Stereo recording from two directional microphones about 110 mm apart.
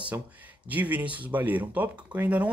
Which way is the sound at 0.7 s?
15° right (ahead or behind).